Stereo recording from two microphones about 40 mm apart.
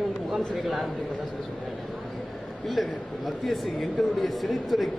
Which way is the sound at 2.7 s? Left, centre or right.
Centre.